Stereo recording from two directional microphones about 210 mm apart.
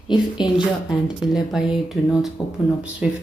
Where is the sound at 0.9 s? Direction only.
Centre (ahead or behind).